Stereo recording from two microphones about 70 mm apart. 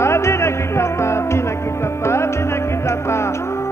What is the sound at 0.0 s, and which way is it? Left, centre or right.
Music, left.